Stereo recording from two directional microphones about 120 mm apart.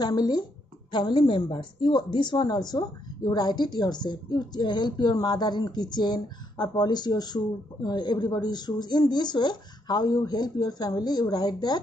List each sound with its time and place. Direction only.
0.0 s a woman's voice: 35° left (ahead or behind)